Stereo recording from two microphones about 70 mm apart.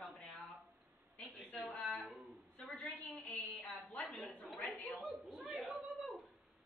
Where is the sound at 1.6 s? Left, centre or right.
Centre.